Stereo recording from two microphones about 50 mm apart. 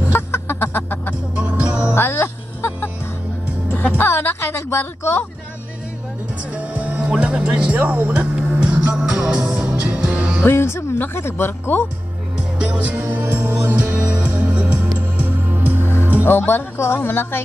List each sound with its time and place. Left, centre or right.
0.1 s a sound: left
1.3 s music: right
1.9 s music: left
4.0 s a woman's voice: left
6.5 s music: right
7.8 s speech: right
8.4 s music: right
9.4 s music: right
10.4 s speech: left
12.5 s music: right
15.0 s music: right
15.8 s music: left
16.3 s speech: left